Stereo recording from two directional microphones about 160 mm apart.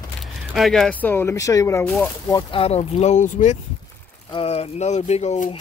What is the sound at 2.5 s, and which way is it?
Speech, 40° left (ahead or behind).